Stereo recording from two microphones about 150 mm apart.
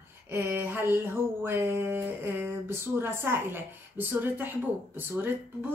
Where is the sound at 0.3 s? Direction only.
15° right (ahead or behind).